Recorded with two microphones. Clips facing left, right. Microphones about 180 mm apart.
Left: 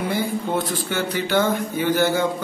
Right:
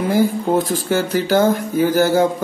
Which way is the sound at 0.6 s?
40° right (ahead or behind).